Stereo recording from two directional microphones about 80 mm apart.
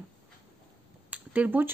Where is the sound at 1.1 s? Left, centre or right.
Centre.